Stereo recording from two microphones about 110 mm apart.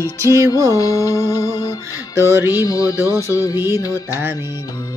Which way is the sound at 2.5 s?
30° left (ahead or behind).